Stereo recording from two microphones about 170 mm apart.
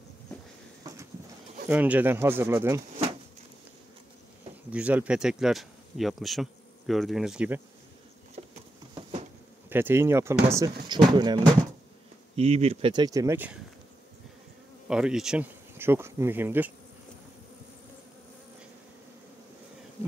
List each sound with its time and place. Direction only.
0.8 s a sound: 20° right (ahead or behind)
1.7 s speech: 10° right (ahead or behind)
4.6 s speech: 10° right (ahead or behind)
8.4 s patter: 40° right (ahead or behind)
9.7 s speech: 15° right (ahead or behind)
12.4 s speech: 40° right (ahead or behind)
12.9 s speech: 20° right (ahead or behind)
14.9 s speech: 5° right (ahead or behind)